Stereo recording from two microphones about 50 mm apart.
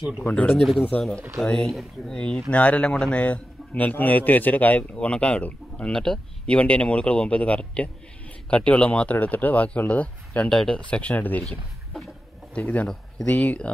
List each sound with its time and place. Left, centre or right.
0.3 s speech: left
1.4 s a man's voice: centre
10.6 s speech: centre
11.0 s speech: left
12.5 s a man's voice: left